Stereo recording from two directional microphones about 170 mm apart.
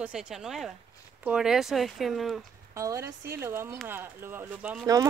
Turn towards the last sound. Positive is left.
turn(degrees=-10)  # may be behind; listen again after turning